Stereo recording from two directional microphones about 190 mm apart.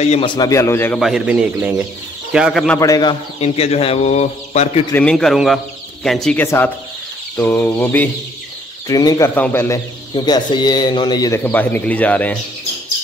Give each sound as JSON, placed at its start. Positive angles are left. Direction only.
{"t": 0.0, "sound": "a man's voice", "side_deg": 30}
{"t": 1.0, "sound": "a man's voice", "side_deg": -5}
{"t": 2.8, "sound": "a man's voice", "side_deg": 20}
{"t": 3.3, "sound": "speech", "side_deg": 35}
{"t": 4.9, "sound": "a man's voice", "side_deg": 5}
{"t": 6.4, "sound": "a man's voice", "side_deg": 15}